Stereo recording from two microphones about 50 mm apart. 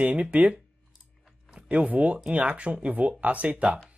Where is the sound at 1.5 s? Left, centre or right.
Right.